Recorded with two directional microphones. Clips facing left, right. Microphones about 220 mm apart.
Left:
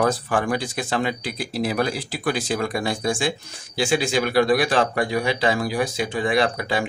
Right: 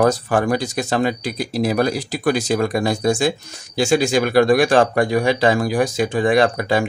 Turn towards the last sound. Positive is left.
turn(degrees=-45)  # may be behind; listen again after turning